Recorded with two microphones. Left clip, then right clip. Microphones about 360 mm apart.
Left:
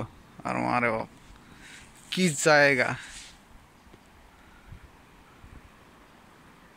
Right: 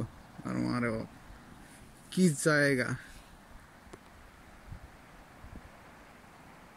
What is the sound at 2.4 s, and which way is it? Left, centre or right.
Speech, centre.